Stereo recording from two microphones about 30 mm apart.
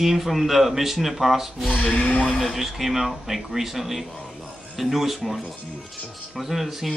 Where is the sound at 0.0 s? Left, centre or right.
Centre.